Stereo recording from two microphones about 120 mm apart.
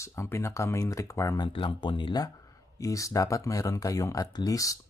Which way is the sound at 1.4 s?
45° left (ahead or behind).